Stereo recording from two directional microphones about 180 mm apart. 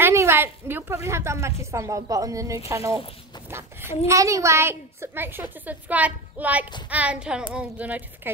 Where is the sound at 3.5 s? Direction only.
15° right (ahead or behind).